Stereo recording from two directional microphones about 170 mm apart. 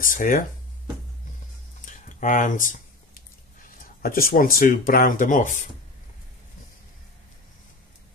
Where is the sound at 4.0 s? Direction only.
60° left (ahead or behind).